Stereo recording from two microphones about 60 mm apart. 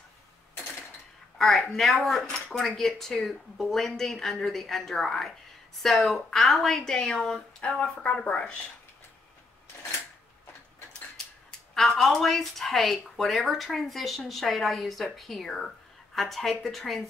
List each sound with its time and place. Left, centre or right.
1.4 s speech: centre
2.2 s speech: centre
2.6 s speech: centre
7.6 s speech: centre
11.7 s speech: centre